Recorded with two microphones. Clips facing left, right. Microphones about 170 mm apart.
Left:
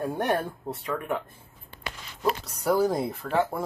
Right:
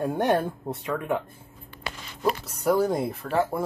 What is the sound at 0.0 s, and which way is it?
Speech, 15° right (ahead or behind).